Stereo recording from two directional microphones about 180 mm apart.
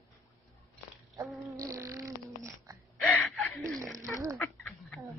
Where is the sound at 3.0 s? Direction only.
10° left (ahead or behind).